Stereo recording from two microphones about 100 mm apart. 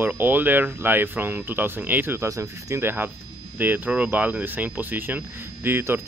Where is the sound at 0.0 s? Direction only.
20° right (ahead or behind).